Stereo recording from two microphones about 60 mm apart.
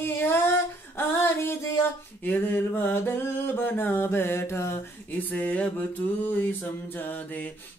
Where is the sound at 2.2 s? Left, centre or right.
Left.